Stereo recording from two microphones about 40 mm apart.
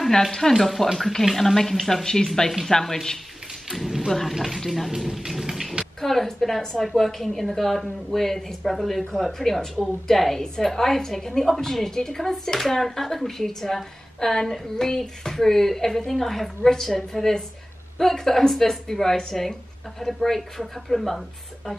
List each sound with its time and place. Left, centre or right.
0.5 s a woman's voice: centre
2.4 s a woman's voice: centre
3.6 s a sound: centre
4.1 s a woman's voice: centre
5.9 s a woman's voice: centre